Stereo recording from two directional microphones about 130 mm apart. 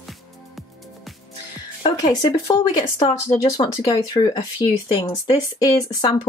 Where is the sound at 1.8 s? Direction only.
30° left (ahead or behind).